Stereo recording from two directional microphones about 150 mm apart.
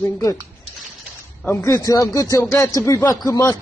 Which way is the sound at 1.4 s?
20° left (ahead or behind).